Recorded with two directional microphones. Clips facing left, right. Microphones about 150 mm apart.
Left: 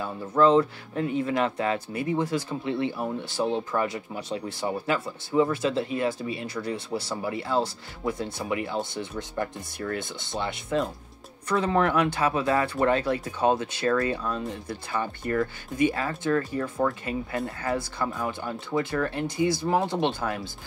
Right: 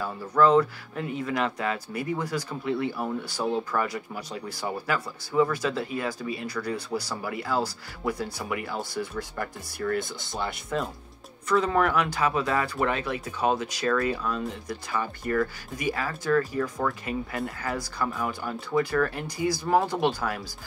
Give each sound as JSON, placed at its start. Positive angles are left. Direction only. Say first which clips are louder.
{"t": 0.0, "sound": "speech", "louder": "left 1 dB", "side_deg": 25}